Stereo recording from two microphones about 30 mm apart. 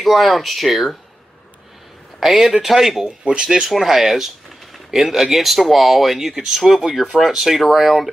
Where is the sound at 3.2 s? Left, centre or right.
Right.